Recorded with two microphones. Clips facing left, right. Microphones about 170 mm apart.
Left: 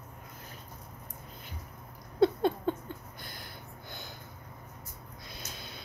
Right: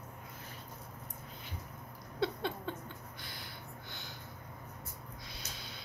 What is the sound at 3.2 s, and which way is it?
Gasp, 50° left (ahead or behind).